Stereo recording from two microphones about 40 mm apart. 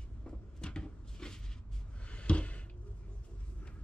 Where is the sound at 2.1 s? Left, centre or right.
Left.